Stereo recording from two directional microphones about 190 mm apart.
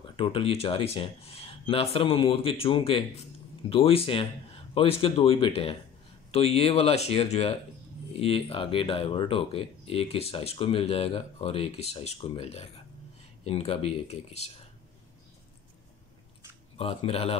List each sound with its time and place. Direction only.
0.1 s speech: 30° left (ahead or behind)
16.7 s speech: 30° left (ahead or behind)